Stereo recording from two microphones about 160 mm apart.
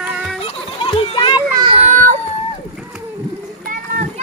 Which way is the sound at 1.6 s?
40° right (ahead or behind).